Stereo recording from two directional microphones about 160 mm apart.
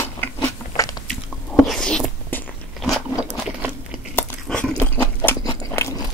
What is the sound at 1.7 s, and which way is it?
Biting, 5° left (ahead or behind).